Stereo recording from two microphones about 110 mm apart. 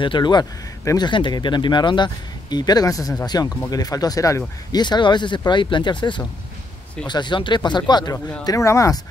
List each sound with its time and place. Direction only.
0.0 s speech: 45° left (ahead or behind)
8.5 s speech: 30° left (ahead or behind)